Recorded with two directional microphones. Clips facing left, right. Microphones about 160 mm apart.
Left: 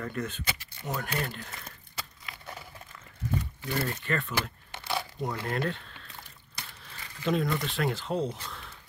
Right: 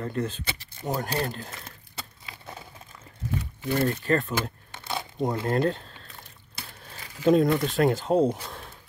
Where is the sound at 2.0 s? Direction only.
25° right (ahead or behind).